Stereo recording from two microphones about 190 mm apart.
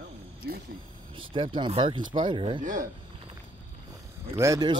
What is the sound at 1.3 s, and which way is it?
Speech, 25° right (ahead or behind).